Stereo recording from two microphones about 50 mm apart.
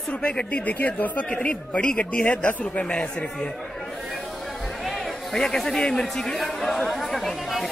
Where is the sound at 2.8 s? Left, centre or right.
Centre.